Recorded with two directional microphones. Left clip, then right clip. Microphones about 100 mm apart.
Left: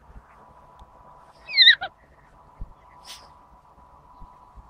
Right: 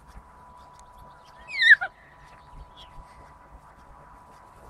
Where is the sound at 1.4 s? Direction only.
50° left (ahead or behind).